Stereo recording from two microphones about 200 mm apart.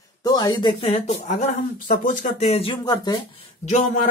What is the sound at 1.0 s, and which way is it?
Speech, 40° left (ahead or behind).